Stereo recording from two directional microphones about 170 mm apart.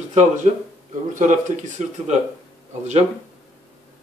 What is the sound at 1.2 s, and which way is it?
Speech, 50° right (ahead or behind).